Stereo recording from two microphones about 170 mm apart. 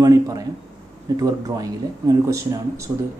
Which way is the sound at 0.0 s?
20° right (ahead or behind).